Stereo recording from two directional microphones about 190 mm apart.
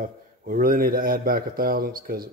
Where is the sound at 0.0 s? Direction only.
50° right (ahead or behind).